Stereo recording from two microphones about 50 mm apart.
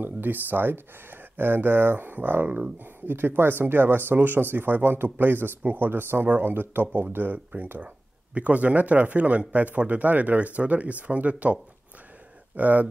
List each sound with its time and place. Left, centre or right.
0.0 s speech: right
8.4 s speech: right